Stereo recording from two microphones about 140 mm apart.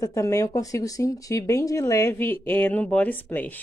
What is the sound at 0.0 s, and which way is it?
Speech, 25° left (ahead or behind).